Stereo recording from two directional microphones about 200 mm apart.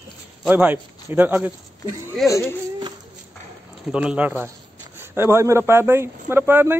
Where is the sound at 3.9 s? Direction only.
5° right (ahead or behind).